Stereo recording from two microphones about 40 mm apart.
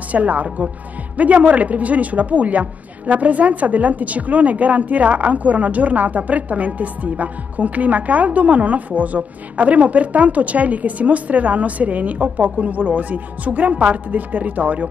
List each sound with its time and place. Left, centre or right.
0.1 s a woman's voice: right